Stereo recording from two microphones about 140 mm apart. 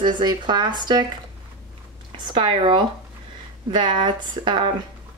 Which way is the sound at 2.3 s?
35° right (ahead or behind).